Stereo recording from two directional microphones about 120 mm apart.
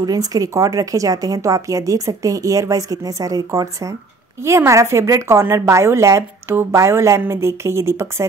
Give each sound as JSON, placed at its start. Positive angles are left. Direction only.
{"t": 0.0, "sound": "a woman's voice", "side_deg": -30}